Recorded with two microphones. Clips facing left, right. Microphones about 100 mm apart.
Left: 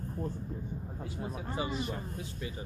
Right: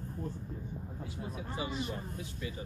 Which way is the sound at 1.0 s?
40° left (ahead or behind).